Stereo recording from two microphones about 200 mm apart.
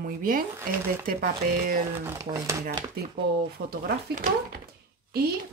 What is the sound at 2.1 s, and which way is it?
Speech, 15° right (ahead or behind).